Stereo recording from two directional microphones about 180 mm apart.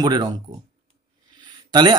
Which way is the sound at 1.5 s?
25° right (ahead or behind).